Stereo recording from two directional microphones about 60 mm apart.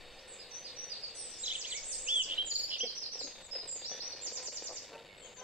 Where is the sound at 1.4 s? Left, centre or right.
Centre.